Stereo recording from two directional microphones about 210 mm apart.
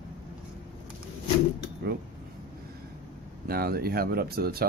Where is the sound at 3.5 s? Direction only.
45° right (ahead or behind).